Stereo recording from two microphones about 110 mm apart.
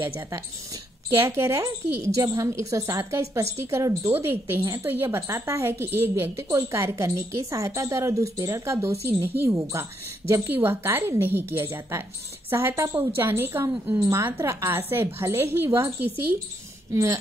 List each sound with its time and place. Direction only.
1.2 s a woman's voice: 20° right (ahead or behind)
16.9 s a woman's voice: 30° right (ahead or behind)